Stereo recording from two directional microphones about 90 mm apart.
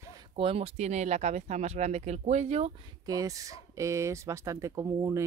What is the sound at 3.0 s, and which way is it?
Speech, 40° right (ahead or behind).